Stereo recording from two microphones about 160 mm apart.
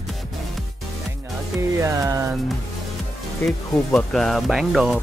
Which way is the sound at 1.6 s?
20° right (ahead or behind).